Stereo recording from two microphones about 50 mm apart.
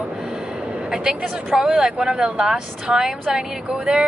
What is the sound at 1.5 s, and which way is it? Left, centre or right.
Speech, centre.